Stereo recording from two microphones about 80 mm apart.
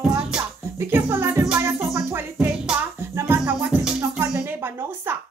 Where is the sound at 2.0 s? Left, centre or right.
Right.